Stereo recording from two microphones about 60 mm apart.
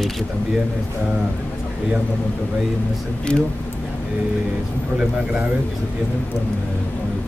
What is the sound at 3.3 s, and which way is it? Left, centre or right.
Speech, centre.